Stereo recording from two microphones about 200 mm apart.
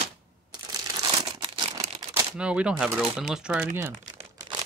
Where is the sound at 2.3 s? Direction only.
5° right (ahead or behind).